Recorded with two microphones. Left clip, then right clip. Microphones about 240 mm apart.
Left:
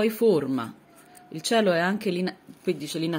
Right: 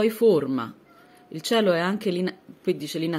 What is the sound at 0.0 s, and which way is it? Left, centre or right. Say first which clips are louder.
A woman's voice: right 2 dB; centre.